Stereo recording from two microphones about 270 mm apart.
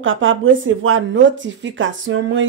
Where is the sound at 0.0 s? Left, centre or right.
Right.